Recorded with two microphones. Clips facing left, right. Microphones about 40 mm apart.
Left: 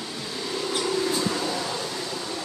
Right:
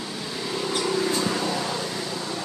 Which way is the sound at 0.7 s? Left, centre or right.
Centre.